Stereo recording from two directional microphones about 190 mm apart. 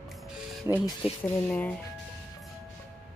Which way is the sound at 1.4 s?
5° left (ahead or behind).